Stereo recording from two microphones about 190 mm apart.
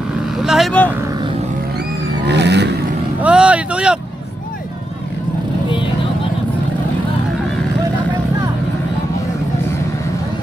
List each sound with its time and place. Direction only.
0.4 s speech: centre (ahead or behind)
2.2 s vehicle: 65° right (ahead or behind)
3.2 s vehicle: 5° right (ahead or behind)